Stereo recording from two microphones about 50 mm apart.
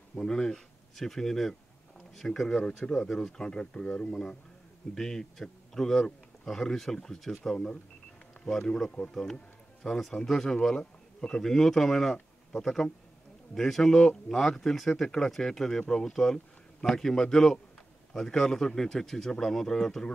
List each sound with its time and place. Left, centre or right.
0.1 s a man's voice: centre